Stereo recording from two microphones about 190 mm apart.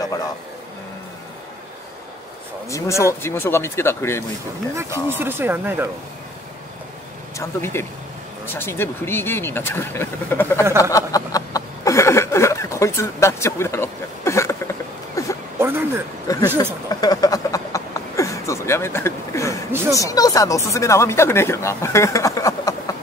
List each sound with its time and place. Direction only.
0.0 s speech: 20° left (ahead or behind)
2.7 s speech: 15° left (ahead or behind)
5.2 s speech: 10° right (ahead or behind)
7.3 s speech: 15° left (ahead or behind)
10.8 s a sound: 15° left (ahead or behind)
16.3 s speech: 20° left (ahead or behind)
16.9 s a sound: 20° left (ahead or behind)
19.7 s speech: 10° right (ahead or behind)
20.0 s speech: 20° left (ahead or behind)